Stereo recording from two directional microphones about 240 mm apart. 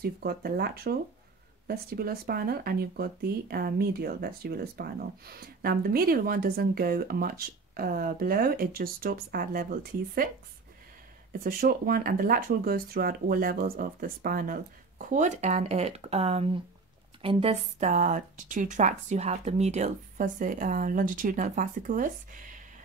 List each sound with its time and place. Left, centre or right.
0.0 s speech: right
11.3 s speech: right